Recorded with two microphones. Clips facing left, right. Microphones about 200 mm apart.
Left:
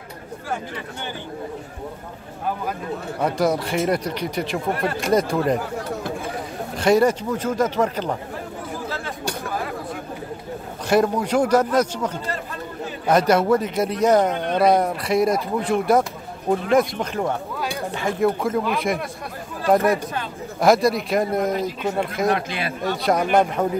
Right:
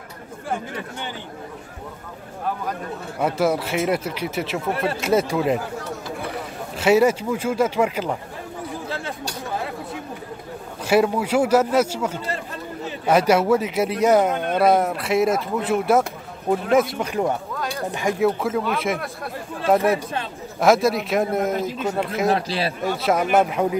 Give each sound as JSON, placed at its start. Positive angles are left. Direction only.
{"t": 3.2, "sound": "speech", "side_deg": -5}
{"t": 6.8, "sound": "speech", "side_deg": -5}
{"t": 10.9, "sound": "speech", "side_deg": -10}
{"t": 22.3, "sound": "a man's voice", "side_deg": -30}
{"t": 22.8, "sound": "speech", "side_deg": -5}